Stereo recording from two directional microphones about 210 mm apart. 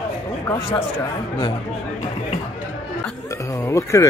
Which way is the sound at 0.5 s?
25° left (ahead or behind).